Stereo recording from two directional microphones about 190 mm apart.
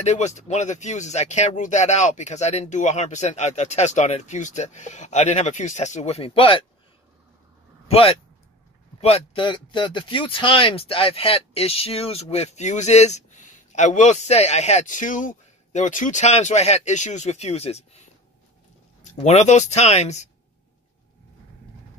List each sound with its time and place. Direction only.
0.0 s speech: 35° left (ahead or behind)
7.9 s speech: 30° left (ahead or behind)
19.0 s speech: 35° left (ahead or behind)